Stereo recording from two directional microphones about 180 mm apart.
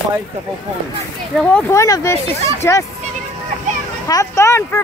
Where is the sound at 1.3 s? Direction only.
5° left (ahead or behind).